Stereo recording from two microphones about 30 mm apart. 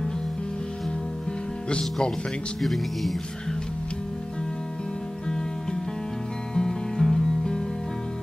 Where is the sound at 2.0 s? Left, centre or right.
Left.